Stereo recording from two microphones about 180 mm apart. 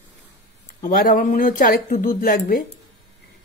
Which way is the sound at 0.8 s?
50° left (ahead or behind).